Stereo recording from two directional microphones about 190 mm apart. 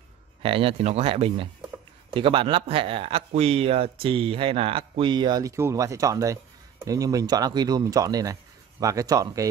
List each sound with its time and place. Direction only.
0.4 s speech: 30° right (ahead or behind)